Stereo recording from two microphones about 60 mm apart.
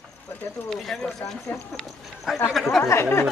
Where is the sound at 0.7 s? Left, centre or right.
Centre.